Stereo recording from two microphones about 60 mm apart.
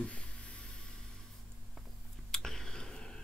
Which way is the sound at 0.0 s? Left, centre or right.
Centre.